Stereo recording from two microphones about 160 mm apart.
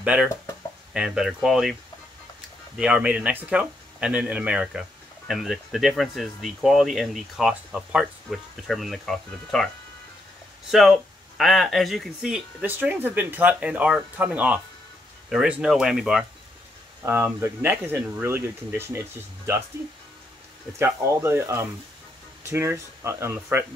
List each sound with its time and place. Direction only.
0.0 s speech: 5° right (ahead or behind)
2.8 s speech: 5° right (ahead or behind)
10.7 s speech: centre (ahead or behind)
17.0 s speech: 15° right (ahead or behind)
20.7 s speech: 15° right (ahead or behind)